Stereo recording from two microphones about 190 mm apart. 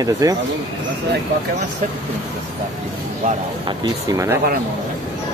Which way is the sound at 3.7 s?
15° right (ahead or behind).